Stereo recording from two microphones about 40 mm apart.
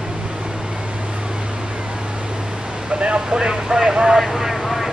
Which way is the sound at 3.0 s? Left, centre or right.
Right.